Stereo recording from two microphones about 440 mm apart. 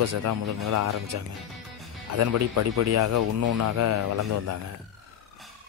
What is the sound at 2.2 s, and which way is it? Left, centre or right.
Speech, right.